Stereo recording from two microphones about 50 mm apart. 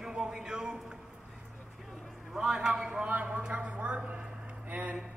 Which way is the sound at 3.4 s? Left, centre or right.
Right.